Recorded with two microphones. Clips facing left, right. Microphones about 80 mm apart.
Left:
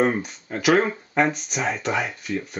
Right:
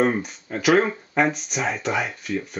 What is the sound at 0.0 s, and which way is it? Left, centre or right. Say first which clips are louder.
Speech: even; centre.